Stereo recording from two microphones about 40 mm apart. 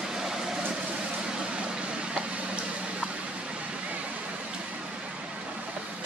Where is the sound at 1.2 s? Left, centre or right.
Right.